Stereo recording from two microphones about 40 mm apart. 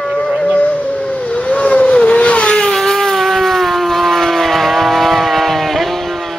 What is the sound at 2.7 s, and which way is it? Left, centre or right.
Civil defense siren, centre.